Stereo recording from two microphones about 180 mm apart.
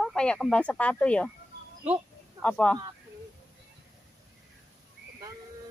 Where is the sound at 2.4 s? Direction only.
5° left (ahead or behind).